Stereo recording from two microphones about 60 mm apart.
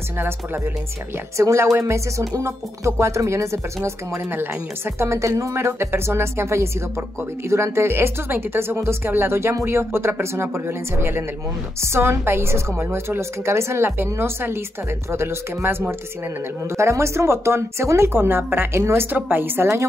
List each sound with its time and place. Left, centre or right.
1.3 s speech: right
16.7 s speech: right